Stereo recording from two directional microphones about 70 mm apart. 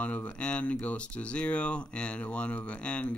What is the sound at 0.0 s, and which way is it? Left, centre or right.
Speech, left.